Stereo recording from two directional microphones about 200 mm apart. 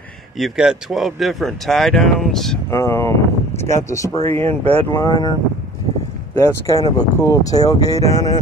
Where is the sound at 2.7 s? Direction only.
15° left (ahead or behind).